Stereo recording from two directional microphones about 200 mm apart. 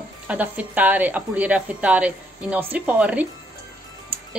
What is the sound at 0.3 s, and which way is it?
Speech, 5° right (ahead or behind).